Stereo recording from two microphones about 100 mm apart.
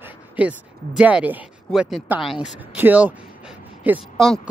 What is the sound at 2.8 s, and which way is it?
Speech, 15° right (ahead or behind).